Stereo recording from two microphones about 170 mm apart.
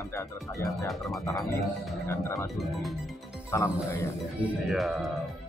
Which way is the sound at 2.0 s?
20° left (ahead or behind).